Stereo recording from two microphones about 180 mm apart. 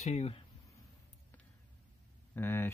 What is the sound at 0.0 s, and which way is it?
Speech, 35° left (ahead or behind).